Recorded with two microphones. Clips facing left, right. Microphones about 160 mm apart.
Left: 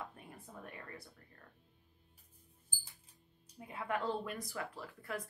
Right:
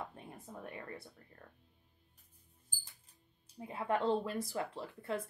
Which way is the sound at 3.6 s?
30° right (ahead or behind).